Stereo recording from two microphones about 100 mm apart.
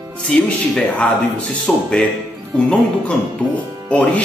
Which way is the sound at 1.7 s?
Centre (ahead or behind).